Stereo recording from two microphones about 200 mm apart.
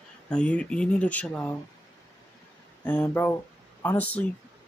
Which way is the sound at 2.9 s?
10° left (ahead or behind).